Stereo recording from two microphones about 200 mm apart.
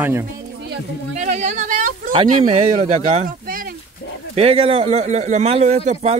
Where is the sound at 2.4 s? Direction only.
30° right (ahead or behind).